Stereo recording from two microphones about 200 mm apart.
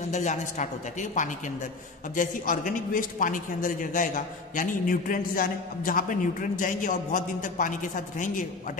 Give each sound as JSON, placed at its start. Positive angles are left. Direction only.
{"t": 0.1, "sound": "a man's voice", "side_deg": 35}